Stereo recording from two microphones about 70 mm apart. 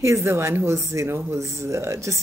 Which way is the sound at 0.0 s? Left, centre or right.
Right.